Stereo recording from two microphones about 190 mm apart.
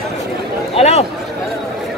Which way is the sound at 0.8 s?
35° left (ahead or behind).